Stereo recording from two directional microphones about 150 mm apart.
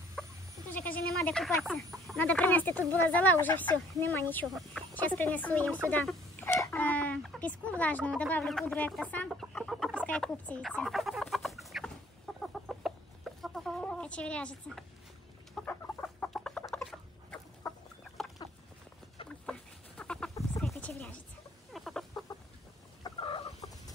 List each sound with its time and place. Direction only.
0.2 s goat: 5° left (ahead or behind)
0.7 s speech: 10° left (ahead or behind)
5.9 s a sound: 10° left (ahead or behind)
6.6 s fowl: 10° left (ahead or behind)
8.1 s speech: 10° left (ahead or behind)
9.3 s chicken: centre (ahead or behind)
17.6 s chicken: 25° left (ahead or behind)
20.0 s chicken: 5° left (ahead or behind)
20.6 s a sound: 5° left (ahead or behind)
21.7 s chicken: centre (ahead or behind)
23.0 s fowl: 35° left (ahead or behind)